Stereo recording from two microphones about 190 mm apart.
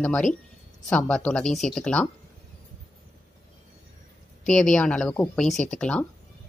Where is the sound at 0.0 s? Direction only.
5° left (ahead or behind).